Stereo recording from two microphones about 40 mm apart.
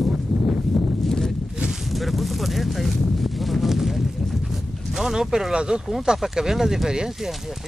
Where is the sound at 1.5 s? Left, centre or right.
Centre.